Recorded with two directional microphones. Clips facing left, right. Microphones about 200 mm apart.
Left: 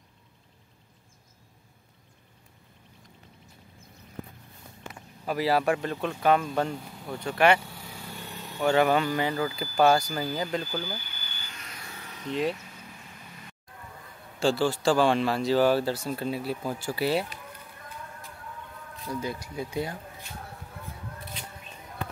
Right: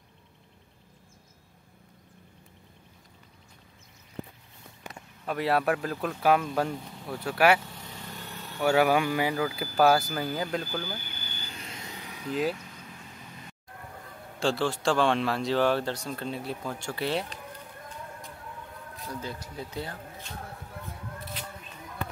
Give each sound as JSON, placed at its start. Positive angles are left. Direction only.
{"t": 5.2, "sound": "speech", "side_deg": 0}
{"t": 7.6, "sound": "vehicle", "side_deg": 5}
{"t": 8.5, "sound": "speech", "side_deg": -5}
{"t": 11.4, "sound": "a sound", "side_deg": -30}
{"t": 14.4, "sound": "speech", "side_deg": 0}
{"t": 19.0, "sound": "speech", "side_deg": 10}